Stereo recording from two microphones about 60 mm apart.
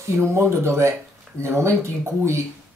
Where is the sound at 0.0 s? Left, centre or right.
Right.